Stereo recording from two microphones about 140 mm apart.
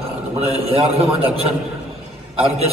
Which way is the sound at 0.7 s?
45° right (ahead or behind).